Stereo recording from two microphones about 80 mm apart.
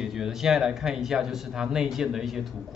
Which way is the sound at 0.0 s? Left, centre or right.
Centre.